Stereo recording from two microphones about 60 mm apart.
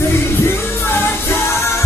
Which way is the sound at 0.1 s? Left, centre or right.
Left.